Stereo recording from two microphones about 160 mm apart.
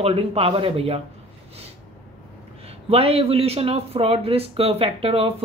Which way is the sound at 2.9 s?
40° right (ahead or behind).